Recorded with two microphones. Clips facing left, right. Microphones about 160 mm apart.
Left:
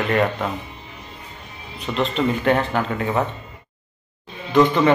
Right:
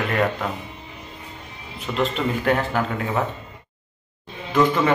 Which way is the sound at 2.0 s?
5° right (ahead or behind).